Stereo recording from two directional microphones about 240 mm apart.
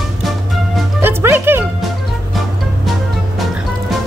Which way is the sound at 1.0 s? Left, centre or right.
Centre.